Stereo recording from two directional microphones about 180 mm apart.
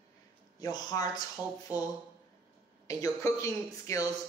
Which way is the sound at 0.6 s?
20° left (ahead or behind).